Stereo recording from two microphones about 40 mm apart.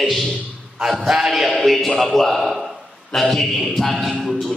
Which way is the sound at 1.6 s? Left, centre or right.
Centre.